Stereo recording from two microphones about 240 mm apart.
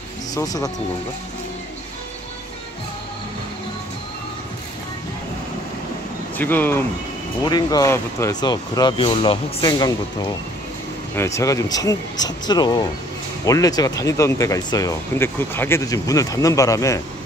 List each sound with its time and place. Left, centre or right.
0.3 s speech: centre
6.3 s speech: centre